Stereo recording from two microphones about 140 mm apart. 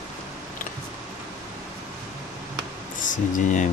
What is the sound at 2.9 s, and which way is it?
Speech, 65° left (ahead or behind).